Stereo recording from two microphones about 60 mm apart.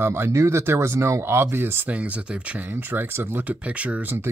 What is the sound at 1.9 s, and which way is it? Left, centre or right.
Speech, right.